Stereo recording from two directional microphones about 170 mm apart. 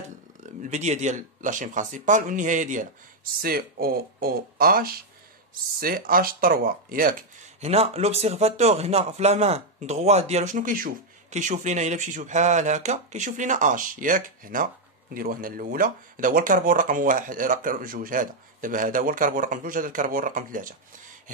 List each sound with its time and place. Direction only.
0.4 s speech: 45° right (ahead or behind)
3.3 s speech: 60° right (ahead or behind)
7.6 s speech: 35° right (ahead or behind); by 20.7 s 50° right (ahead or behind)